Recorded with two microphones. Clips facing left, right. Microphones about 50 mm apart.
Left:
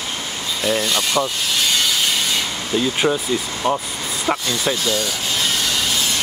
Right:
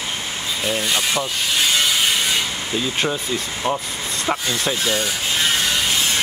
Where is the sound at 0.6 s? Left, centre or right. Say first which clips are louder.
Left 2 dB; centre.